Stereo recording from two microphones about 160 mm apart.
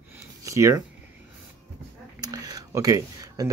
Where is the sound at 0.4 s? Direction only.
20° right (ahead or behind).